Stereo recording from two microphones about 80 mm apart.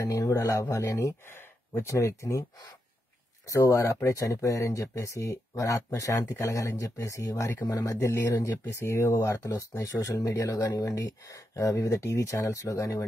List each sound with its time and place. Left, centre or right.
0.0 s speech: left
1.3 s speech: left
3.4 s speech: left